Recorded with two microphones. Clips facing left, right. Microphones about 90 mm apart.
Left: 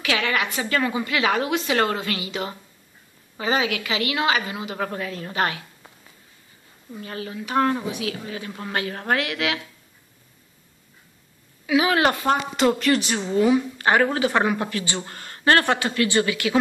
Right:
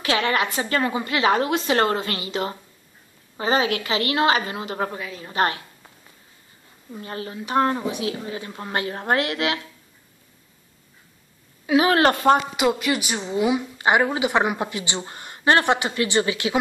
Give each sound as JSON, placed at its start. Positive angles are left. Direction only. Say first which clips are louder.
{"t": 0.0, "sound": "a woman's voice", "louder": "right 2 dB", "side_deg": -35}
{"t": 4.9, "sound": "a woman's voice", "louder": "left 3 dB", "side_deg": -10}
{"t": 5.3, "sound": "a woman's voice", "louder": "right 3 dB", "side_deg": -35}
{"t": 7.0, "sound": "speech", "louder": "even", "side_deg": -35}
{"t": 8.5, "sound": "a woman's voice", "louder": "left 1 dB", "side_deg": -15}
{"t": 8.7, "sound": "a woman's voice", "louder": "right 2 dB", "side_deg": -30}
{"t": 11.6, "sound": "a woman's voice", "louder": "right 2 dB", "side_deg": -40}
{"t": 12.5, "sound": "a woman's voice", "louder": "left 2 dB", "side_deg": -5}